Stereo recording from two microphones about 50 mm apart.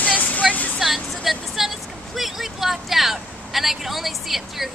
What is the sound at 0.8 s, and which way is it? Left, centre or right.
Vehicle, centre.